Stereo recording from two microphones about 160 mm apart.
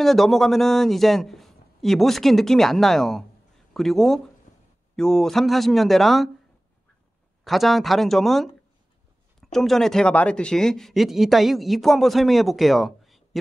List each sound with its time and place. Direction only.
0.0 s speech: centre (ahead or behind)
7.4 s speech: centre (ahead or behind)